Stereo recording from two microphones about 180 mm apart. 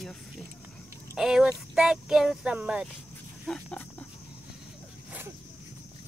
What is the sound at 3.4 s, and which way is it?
Pig, 5° left (ahead or behind).